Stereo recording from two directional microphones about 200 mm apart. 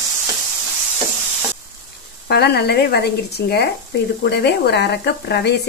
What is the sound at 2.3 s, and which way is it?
Speech, 55° left (ahead or behind).